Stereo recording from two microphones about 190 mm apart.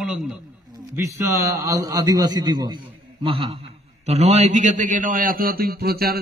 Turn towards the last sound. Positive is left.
turn(degrees=-55)  # may be behind; listen again after turning